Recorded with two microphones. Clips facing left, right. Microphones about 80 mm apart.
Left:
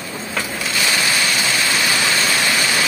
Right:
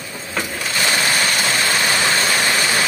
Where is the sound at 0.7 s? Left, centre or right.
Right.